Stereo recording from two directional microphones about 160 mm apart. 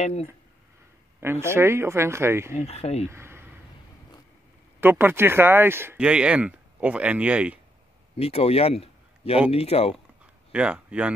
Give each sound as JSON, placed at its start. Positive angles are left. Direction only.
{"t": 0.0, "sound": "speech", "side_deg": 40}
{"t": 1.2, "sound": "speech", "side_deg": -15}
{"t": 2.5, "sound": "speech", "side_deg": 40}
{"t": 3.1, "sound": "a sound", "side_deg": -15}
{"t": 4.7, "sound": "speech", "side_deg": -15}
{"t": 8.2, "sound": "a man's voice", "side_deg": 40}
{"t": 10.5, "sound": "speech", "side_deg": -5}